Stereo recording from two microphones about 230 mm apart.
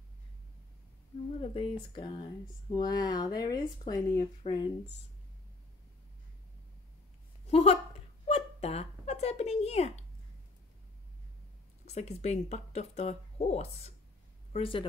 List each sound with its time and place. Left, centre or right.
1.4 s speech: left
7.4 s speech: left
8.3 s a sound: left
11.8 s a woman's voice: left